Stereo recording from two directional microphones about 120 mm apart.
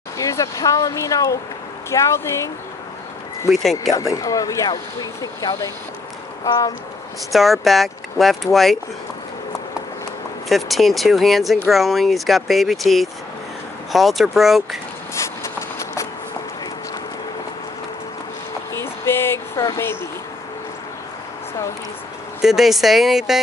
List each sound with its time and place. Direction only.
0.2 s speech: 25° left (ahead or behind)
3.9 s speech: 25° left (ahead or behind)
7.3 s speech: centre (ahead or behind)
10.5 s speech: centre (ahead or behind)
15.1 s a sound: 25° left (ahead or behind)
18.7 s a sound: 20° left (ahead or behind)
22.4 s speech: centre (ahead or behind)